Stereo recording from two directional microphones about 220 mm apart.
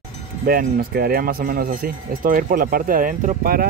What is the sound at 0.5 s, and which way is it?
Speech, 40° right (ahead or behind).